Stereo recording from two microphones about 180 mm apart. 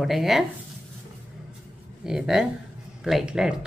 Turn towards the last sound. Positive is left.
turn(degrees=-5)  # may be behind; listen again after turning